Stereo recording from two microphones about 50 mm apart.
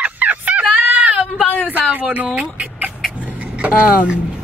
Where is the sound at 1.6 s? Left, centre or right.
Right.